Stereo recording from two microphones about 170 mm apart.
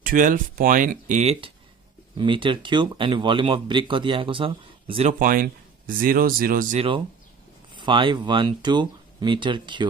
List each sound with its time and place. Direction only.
0.0 s speech: 50° right (ahead or behind); by 5.1 s 30° right (ahead or behind)
5.2 s speech: 55° right (ahead or behind)
7.7 s speech: 30° right (ahead or behind)